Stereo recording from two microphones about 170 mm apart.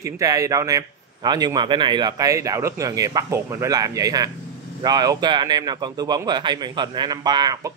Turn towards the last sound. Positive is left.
turn(degrees=-25)  # may be behind; listen again after turning